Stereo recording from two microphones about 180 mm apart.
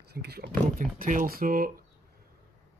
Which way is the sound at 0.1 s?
60° right (ahead or behind).